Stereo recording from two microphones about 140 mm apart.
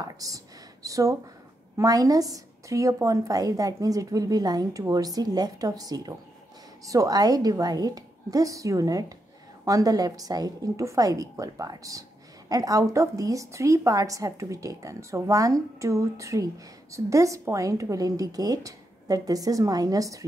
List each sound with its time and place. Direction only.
0.2 s a woman's voice: 25° right (ahead or behind)